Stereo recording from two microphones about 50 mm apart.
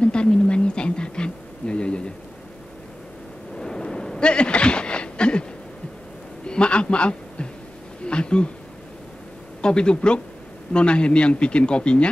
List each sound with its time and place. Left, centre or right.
0.0 s speech: centre
3.5 s a sound: centre
9.6 s speech: centre